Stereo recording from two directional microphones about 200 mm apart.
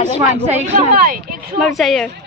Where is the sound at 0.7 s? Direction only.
45° right (ahead or behind).